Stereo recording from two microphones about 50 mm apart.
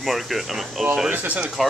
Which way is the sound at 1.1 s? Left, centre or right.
Right.